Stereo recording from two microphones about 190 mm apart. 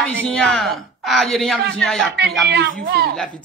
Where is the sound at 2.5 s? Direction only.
60° right (ahead or behind).